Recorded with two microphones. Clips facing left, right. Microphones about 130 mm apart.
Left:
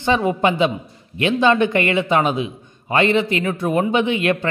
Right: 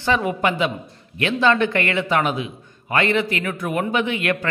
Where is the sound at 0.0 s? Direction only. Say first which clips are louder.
Left 3 dB; 25° left (ahead or behind).